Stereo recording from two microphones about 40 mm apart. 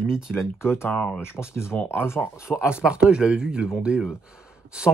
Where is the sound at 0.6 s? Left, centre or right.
Left.